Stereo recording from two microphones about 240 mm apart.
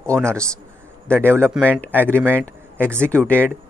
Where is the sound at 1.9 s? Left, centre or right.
Centre.